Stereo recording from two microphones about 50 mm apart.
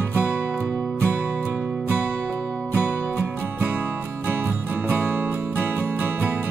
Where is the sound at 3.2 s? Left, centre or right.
Right.